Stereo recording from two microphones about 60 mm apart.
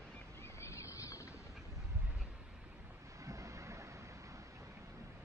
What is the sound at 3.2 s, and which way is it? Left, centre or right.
Vehicle, right.